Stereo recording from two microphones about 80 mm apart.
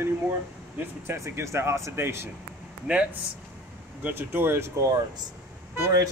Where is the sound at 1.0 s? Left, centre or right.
Right.